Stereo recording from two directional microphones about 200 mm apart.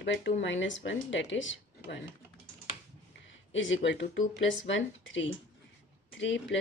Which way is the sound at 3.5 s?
70° left (ahead or behind).